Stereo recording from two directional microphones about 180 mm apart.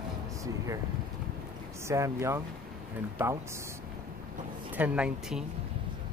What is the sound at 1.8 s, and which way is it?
Speech, 15° right (ahead or behind).